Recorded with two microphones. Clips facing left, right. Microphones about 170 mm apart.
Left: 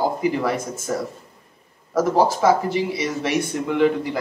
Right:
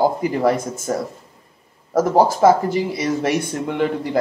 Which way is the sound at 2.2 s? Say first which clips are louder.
Right 3 dB; 45° right (ahead or behind).